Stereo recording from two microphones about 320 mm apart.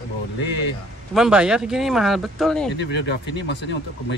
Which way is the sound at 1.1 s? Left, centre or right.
Centre.